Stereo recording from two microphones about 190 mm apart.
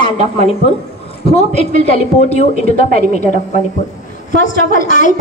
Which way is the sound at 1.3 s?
30° left (ahead or behind).